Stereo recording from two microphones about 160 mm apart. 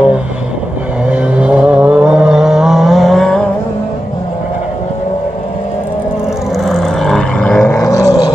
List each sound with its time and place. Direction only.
1.0 s vehicle: 5° right (ahead or behind)
6.5 s vehicle: centre (ahead or behind)
7.8 s a sound: 20° left (ahead or behind)